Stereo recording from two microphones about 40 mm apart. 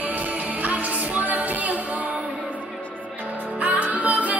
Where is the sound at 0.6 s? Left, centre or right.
Right.